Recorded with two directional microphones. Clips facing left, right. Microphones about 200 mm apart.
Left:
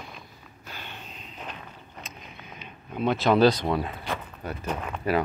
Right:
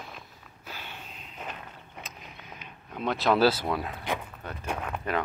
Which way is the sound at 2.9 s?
Centre (ahead or behind).